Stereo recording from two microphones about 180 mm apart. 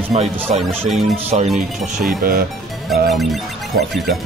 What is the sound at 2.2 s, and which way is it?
Speech, 55° right (ahead or behind).